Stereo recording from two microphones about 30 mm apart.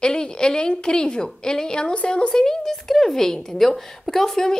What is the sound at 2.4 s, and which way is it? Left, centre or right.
A woman's voice, centre.